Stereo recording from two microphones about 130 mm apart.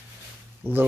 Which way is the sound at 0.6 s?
15° right (ahead or behind).